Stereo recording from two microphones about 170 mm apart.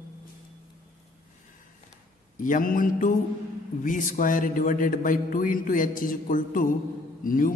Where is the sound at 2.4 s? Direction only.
50° left (ahead or behind).